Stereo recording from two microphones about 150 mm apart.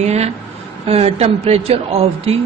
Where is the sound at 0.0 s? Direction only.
45° right (ahead or behind).